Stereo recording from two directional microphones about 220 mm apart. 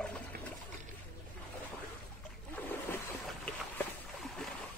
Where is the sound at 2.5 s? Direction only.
5° left (ahead or behind).